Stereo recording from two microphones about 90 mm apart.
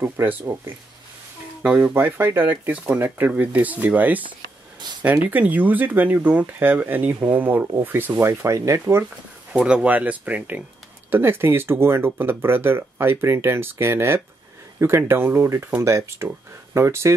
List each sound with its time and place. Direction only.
0.0 s speech: 25° right (ahead or behind)
5.3 s speech: 20° right (ahead or behind)
9.5 s speech: 15° right (ahead or behind); by 17.1 s 30° right (ahead or behind)